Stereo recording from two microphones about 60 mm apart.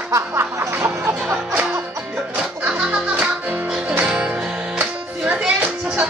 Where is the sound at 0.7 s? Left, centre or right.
Right.